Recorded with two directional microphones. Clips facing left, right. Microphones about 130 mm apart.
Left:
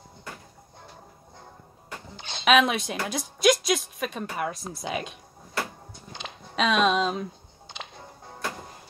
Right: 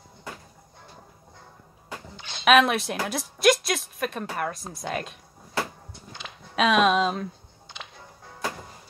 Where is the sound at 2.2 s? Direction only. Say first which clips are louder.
Left 2 dB; 25° left (ahead or behind).